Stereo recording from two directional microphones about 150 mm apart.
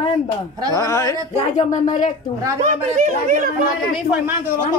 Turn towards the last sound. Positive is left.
turn(degrees=-55)  # may be behind; listen again after turning